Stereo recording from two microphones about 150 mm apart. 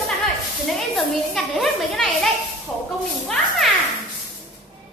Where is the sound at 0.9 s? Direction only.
Centre (ahead or behind).